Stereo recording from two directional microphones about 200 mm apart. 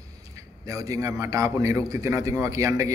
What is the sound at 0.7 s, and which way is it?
A man's voice, 15° right (ahead or behind).